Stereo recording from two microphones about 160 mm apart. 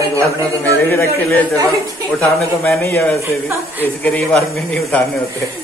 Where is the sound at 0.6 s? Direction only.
15° left (ahead or behind).